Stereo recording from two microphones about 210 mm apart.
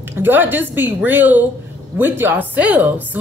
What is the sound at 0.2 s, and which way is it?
A woman's voice, 10° right (ahead or behind).